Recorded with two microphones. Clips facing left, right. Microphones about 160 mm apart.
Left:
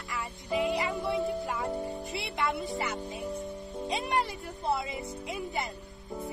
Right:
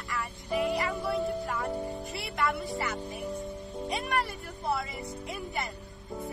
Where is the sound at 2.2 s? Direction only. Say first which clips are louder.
Right 1 dB; 20° left (ahead or behind).